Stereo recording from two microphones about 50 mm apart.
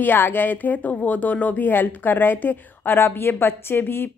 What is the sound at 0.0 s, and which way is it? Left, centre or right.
A woman's voice, left.